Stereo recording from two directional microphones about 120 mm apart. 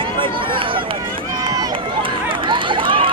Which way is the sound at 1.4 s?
35° right (ahead or behind).